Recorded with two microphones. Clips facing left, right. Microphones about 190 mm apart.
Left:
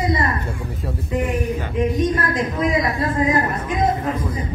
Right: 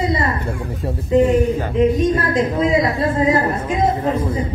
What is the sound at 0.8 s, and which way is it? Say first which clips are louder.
Speech: right 9 dB; 25° right (ahead or behind).